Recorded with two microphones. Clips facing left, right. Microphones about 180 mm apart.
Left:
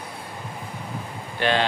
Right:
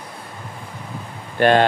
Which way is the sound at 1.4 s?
50° right (ahead or behind).